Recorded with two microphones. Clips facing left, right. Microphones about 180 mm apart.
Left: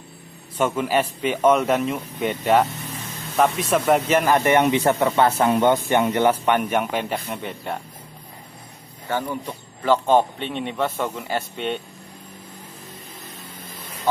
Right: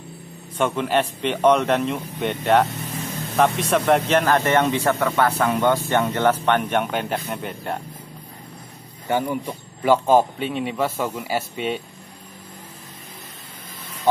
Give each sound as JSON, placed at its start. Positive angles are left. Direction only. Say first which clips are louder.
{"t": 0.6, "sound": "a man's voice", "louder": "even", "side_deg": 5}
{"t": 9.1, "sound": "a man's voice", "louder": "right 3 dB", "side_deg": -10}